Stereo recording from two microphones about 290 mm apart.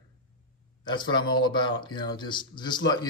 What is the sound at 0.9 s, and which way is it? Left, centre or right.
Speech, centre.